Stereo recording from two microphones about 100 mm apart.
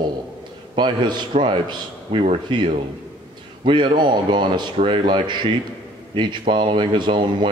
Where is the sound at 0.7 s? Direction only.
50° right (ahead or behind).